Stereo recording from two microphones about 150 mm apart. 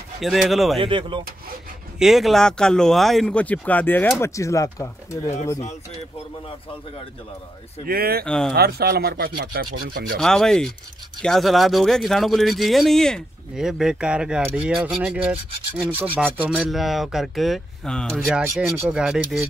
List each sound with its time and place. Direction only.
0.2 s speech: centre (ahead or behind)
0.7 s speech: 35° right (ahead or behind)
2.0 s speech: centre (ahead or behind); by 5.3 s 20° left (ahead or behind)
7.8 s speech: 85° right
8.3 s speech: 5° left (ahead or behind)
8.5 s speech: 90° right
10.1 s speech: 5° left (ahead or behind)
15.8 s rub: 10° right (ahead or behind)
16.3 s speech: 5° right (ahead or behind)
18.3 s speech: 5° right (ahead or behind)
18.7 s rub: 15° right (ahead or behind)
18.9 s speech: 5° right (ahead or behind)